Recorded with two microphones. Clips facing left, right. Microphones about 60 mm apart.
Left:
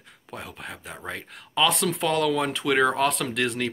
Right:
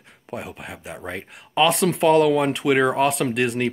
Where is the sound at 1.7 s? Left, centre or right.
Right.